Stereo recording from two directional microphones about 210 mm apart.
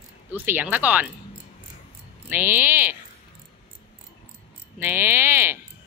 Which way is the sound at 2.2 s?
10° right (ahead or behind).